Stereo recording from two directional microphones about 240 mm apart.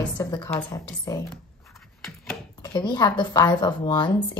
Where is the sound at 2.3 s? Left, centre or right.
Centre.